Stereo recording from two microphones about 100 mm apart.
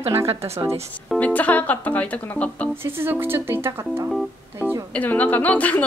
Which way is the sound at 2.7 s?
25° right (ahead or behind).